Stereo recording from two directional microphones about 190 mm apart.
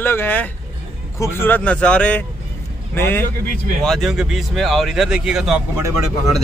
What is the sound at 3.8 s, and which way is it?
Speech, centre (ahead or behind).